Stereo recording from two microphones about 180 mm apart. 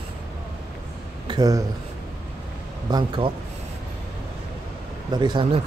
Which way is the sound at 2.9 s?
30° right (ahead or behind).